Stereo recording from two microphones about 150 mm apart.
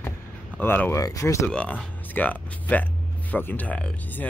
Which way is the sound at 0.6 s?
15° left (ahead or behind).